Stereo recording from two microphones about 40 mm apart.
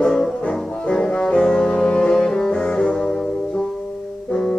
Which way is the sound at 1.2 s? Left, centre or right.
Centre.